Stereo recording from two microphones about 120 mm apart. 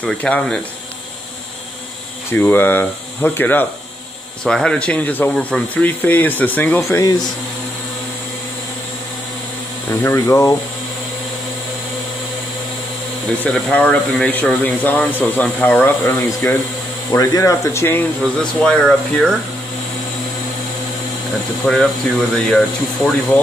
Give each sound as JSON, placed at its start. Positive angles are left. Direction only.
{"t": 0.0, "sound": "speech", "side_deg": 10}
{"t": 2.3, "sound": "speech", "side_deg": 20}
{"t": 9.8, "sound": "speech", "side_deg": 20}
{"t": 13.4, "sound": "speech", "side_deg": 10}
{"t": 17.1, "sound": "speech", "side_deg": 30}
{"t": 18.4, "sound": "speech", "side_deg": 5}
{"t": 21.6, "sound": "speech", "side_deg": -5}